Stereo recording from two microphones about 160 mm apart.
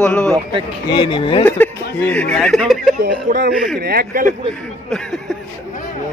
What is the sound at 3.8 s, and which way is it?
Speech, 70° right (ahead or behind).